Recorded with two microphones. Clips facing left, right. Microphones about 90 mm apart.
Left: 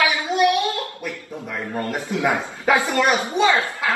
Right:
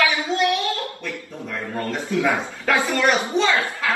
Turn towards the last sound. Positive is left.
turn(degrees=15)  # may be behind; listen again after turning